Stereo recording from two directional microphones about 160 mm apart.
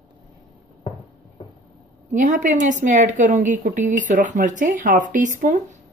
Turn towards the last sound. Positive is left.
turn(degrees=-50)  # may be behind; listen again after turning